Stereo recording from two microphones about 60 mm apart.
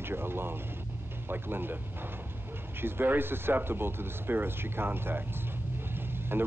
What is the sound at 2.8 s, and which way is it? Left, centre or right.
Speech, right.